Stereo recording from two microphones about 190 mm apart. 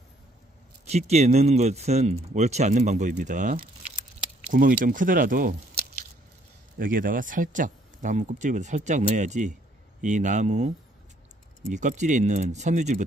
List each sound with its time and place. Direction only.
0.8 s speech: 35° right (ahead or behind)
6.8 s speech: 45° right (ahead or behind)
11.7 s speech: 40° right (ahead or behind)